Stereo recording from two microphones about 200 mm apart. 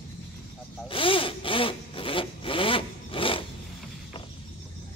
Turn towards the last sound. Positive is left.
turn(degrees=25)  # may be behind; listen again after turning